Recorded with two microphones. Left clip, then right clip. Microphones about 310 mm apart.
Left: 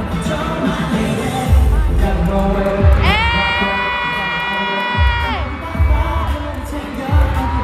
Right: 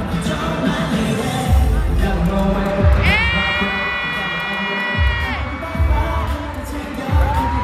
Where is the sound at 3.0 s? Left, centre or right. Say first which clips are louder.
Left 1 dB; centre.